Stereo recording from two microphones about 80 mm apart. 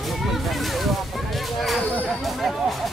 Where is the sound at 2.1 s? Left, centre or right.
Centre.